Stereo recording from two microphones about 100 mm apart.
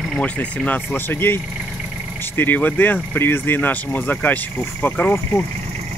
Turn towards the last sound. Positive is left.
turn(degrees=15)  # may be behind; listen again after turning